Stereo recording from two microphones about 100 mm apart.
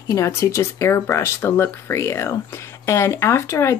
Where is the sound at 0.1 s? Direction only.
30° left (ahead or behind).